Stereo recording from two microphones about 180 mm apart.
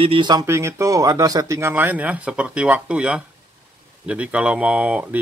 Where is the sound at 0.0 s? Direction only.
30° right (ahead or behind).